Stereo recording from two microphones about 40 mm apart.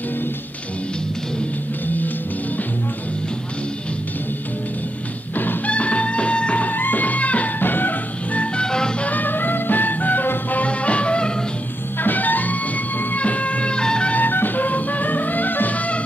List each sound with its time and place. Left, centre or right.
5.7 s music: left
6.6 s music: left
7.6 s music: left
8.5 s music: centre
9.0 s music: left
10.7 s music: left
12.0 s music: left
14.1 s music: left